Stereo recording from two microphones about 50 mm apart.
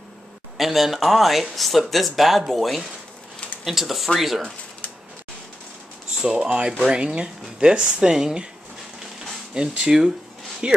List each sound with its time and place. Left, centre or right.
0.6 s speech: centre
6.1 s speech: centre
9.5 s speech: centre
10.6 s speech: right